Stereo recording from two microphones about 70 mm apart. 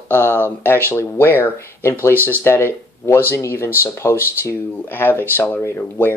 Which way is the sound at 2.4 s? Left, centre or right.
Left.